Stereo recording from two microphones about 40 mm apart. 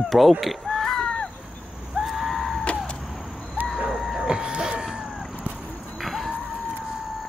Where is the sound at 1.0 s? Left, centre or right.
Centre.